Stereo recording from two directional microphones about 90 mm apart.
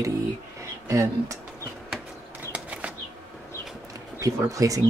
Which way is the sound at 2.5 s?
15° right (ahead or behind).